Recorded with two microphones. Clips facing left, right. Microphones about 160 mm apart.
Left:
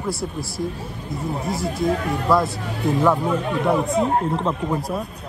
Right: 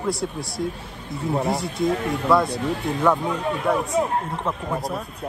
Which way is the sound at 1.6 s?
65° left (ahead or behind).